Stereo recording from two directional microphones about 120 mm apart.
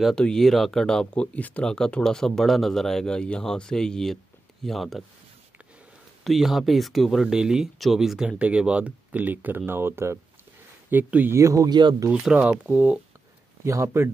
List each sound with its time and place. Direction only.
0.0 s speech: 5° left (ahead or behind)
6.2 s speech: centre (ahead or behind); by 12.1 s 35° right (ahead or behind)
12.1 s speech: 10° right (ahead or behind)
13.7 s speech: 25° right (ahead or behind)